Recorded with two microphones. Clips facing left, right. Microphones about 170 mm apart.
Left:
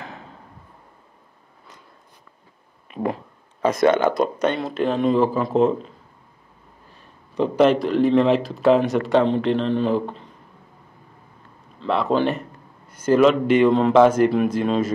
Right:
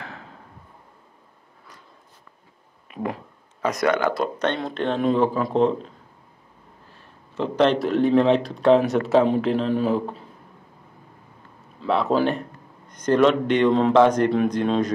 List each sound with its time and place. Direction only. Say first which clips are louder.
2.9 s a sound: left 4 dB; 30° left (ahead or behind)
3.6 s speech: left 4 dB; 25° left (ahead or behind)
4.5 s speech: left 2 dB; 5° left (ahead or behind)
7.3 s speech: left 3 dB; 10° left (ahead or behind)
11.8 s speech: even; centre (ahead or behind)